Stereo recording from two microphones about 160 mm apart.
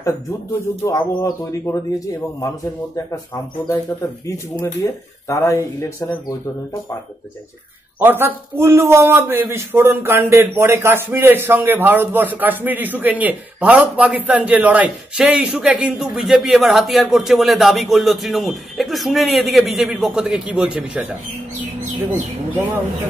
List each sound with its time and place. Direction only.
0.8 s speech: 20° left (ahead or behind)
4.6 s speech: 20° left (ahead or behind)
8.0 s a man's voice: 15° right (ahead or behind)